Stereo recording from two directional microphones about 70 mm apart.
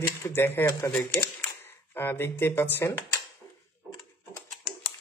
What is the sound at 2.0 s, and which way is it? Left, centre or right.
Speech, left.